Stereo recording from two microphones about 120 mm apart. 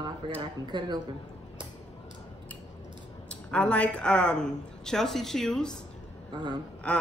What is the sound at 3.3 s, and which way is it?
A woman's voice, 10° left (ahead or behind).